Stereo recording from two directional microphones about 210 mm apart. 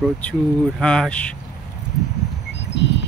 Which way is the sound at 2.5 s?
55° left (ahead or behind).